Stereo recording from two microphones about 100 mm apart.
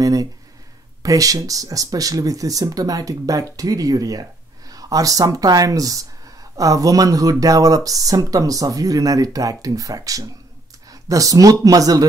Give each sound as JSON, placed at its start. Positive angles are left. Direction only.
{"t": 0.0, "sound": "speech", "side_deg": -35}